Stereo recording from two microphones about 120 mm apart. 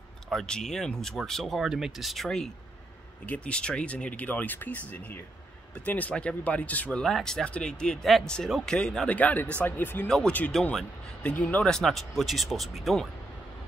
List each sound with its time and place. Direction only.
0.3 s speech: 5° left (ahead or behind)
10.0 s speech: 5° left (ahead or behind)